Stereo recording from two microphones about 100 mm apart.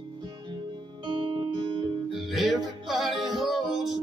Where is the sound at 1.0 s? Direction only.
50° right (ahead or behind).